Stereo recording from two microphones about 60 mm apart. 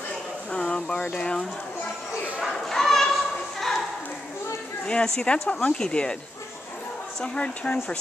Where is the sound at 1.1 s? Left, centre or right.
Centre.